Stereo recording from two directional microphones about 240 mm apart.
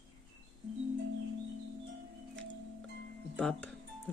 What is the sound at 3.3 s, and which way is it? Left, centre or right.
Speech, centre.